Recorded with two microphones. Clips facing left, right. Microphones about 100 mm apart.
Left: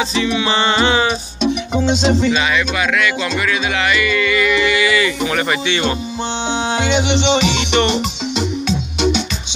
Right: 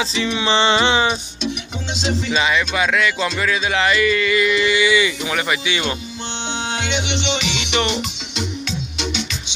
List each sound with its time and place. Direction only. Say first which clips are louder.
0.3 s speech: right 3 dB; 25° right (ahead or behind)
1.4 s music: left 9 dB; 45° left (ahead or behind)
2.3 s speech: left 1 dB; 25° right (ahead or behind)
5.3 s speech: left 3 dB; 10° right (ahead or behind)
6.7 s music: left 8 dB; 40° left (ahead or behind)